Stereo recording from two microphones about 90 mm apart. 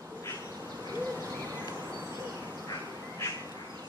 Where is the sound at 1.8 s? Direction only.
40° right (ahead or behind).